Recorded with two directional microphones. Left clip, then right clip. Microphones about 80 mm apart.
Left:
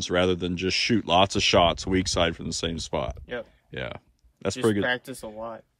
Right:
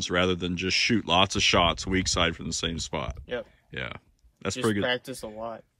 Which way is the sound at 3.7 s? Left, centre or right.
Left.